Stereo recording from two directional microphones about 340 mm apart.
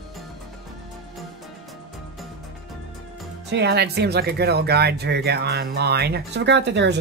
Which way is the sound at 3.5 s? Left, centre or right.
Right.